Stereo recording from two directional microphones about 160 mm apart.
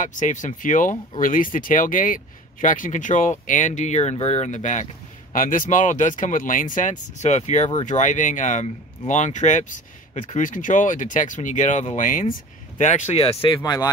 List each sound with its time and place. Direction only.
0.0 s speech: 50° left (ahead or behind); by 13.6 s 35° left (ahead or behind)
13.6 s speech: 20° left (ahead or behind)